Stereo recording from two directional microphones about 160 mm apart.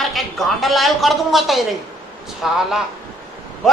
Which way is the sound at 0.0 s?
Centre (ahead or behind).